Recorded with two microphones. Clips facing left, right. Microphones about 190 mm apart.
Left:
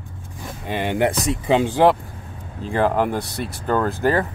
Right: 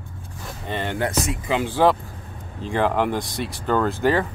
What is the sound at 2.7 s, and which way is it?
Speech, 40° left (ahead or behind).